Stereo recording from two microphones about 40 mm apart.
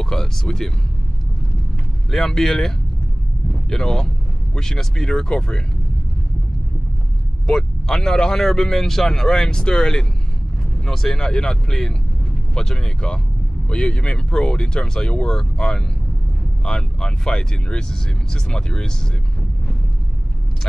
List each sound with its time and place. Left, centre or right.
0.0 s speech: centre
2.0 s speech: centre
3.7 s speech: centre
7.4 s speech: centre